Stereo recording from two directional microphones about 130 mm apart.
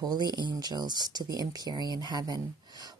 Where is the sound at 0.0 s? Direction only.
35° right (ahead or behind).